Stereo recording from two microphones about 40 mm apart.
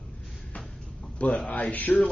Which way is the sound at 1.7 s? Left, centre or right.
Left.